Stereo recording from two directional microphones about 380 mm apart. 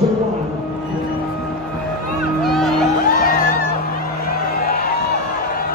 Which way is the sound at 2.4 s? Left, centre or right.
Centre.